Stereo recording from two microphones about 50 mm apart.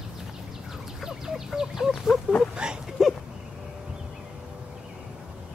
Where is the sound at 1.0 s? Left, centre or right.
Centre.